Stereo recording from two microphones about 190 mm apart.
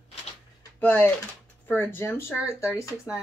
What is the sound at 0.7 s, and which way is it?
Speech, 10° left (ahead or behind).